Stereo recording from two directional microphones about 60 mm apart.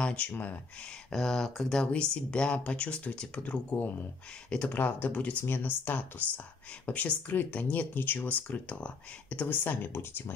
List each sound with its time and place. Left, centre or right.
0.0 s speech: centre
1.1 s speech: centre; by 5.4 s left
5.4 s speech: left